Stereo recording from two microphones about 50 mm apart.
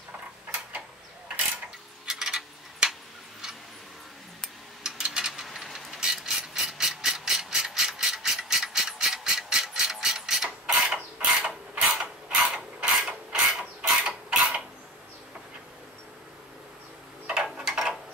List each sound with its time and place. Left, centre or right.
2.0 s a sound: centre
2.9 s tick-tock: centre
4.8 s ratchet: centre
9.5 s mechanisms: centre
10.9 s creak: right
17.6 s a sound: centre